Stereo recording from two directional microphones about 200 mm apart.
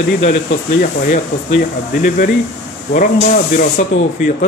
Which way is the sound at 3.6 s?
45° left (ahead or behind).